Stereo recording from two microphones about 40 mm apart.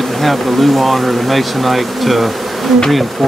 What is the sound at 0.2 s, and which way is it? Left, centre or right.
Speech, centre.